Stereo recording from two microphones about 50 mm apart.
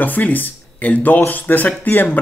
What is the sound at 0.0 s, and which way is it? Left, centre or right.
Speech, left.